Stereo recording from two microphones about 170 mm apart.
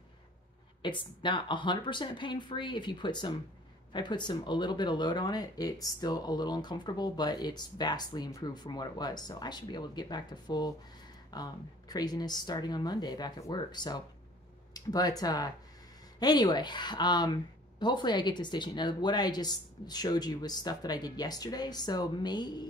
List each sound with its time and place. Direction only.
0.8 s speech: 30° left (ahead or behind)